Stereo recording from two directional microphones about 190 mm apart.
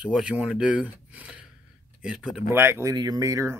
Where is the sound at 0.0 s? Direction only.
5° right (ahead or behind).